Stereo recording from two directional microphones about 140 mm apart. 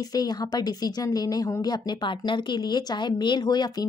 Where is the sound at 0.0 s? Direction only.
30° left (ahead or behind).